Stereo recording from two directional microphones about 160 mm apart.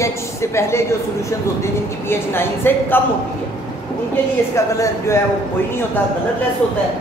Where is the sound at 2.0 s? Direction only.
15° left (ahead or behind).